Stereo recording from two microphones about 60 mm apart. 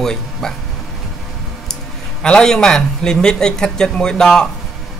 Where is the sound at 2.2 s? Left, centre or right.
Centre.